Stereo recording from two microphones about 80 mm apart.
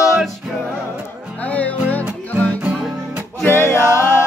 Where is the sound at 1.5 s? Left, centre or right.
Centre.